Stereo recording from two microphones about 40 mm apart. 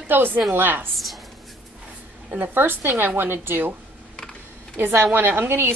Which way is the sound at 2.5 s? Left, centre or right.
Right.